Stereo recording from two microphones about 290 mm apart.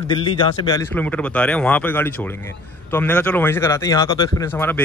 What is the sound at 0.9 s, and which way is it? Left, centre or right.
A man's voice, centre.